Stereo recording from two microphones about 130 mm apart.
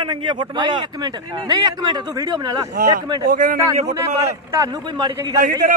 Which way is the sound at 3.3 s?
85° right.